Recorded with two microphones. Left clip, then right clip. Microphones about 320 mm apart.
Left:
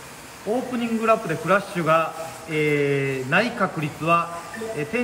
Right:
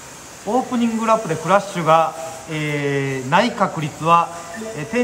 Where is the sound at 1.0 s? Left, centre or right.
Centre.